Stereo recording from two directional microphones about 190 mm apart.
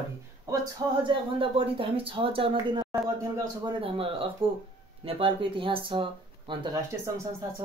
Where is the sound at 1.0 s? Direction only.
30° right (ahead or behind).